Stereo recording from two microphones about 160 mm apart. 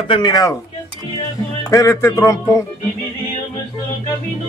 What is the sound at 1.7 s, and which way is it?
Speech, 20° left (ahead or behind).